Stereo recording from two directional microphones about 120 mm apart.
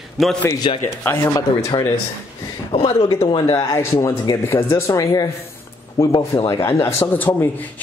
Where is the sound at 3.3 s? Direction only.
35° left (ahead or behind).